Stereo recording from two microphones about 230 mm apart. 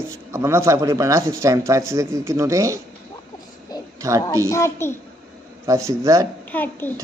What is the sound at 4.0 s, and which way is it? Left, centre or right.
Speech, centre.